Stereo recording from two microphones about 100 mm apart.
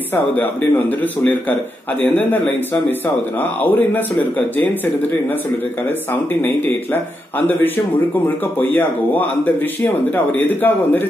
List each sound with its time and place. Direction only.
0.1 s speech: 20° left (ahead or behind)
6.4 s speech: 20° left (ahead or behind)